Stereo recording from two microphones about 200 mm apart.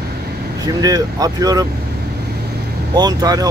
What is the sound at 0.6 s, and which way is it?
Speech, 20° right (ahead or behind).